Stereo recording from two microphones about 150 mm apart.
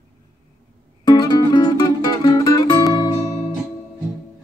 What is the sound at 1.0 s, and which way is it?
Music, 30° left (ahead or behind).